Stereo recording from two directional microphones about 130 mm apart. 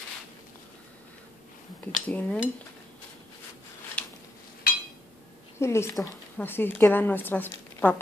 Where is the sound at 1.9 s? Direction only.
10° left (ahead or behind).